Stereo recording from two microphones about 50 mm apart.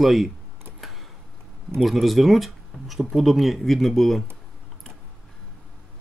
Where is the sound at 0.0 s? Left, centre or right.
Centre.